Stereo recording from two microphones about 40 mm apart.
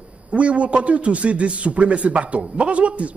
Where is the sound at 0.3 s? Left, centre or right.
Right.